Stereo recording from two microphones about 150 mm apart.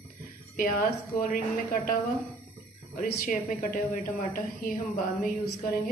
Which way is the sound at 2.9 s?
60° left (ahead or behind).